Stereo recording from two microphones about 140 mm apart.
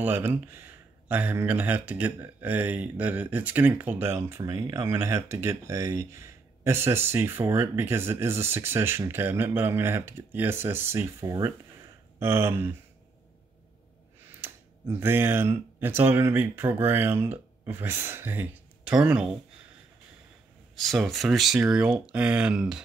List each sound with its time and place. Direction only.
0.0 s speech: 15° right (ahead or behind)
14.4 s speech: 15° right (ahead or behind)
20.7 s speech: centre (ahead or behind)